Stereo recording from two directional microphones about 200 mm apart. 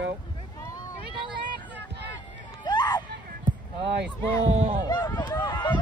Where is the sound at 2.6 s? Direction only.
20° left (ahead or behind).